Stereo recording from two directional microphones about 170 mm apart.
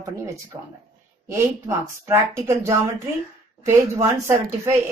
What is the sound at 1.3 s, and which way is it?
Speech, 15° right (ahead or behind).